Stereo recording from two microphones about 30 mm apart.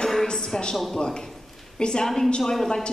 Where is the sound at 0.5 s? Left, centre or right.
Left.